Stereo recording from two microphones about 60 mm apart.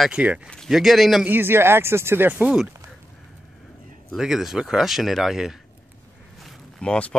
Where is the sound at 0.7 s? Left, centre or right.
Centre.